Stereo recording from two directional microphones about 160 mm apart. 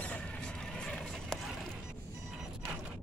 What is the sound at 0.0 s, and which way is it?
Clip-clop, 10° left (ahead or behind).